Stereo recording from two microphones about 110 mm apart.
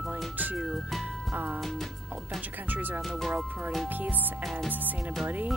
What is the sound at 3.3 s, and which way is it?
Speech, 15° right (ahead or behind).